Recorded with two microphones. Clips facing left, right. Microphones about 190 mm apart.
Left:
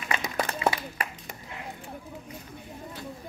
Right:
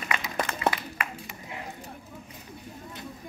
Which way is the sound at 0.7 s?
35° left (ahead or behind).